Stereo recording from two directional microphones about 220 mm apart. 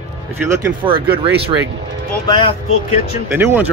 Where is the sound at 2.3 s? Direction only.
15° left (ahead or behind).